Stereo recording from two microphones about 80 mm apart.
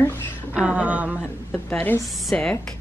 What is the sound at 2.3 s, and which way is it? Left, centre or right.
Speech, centre.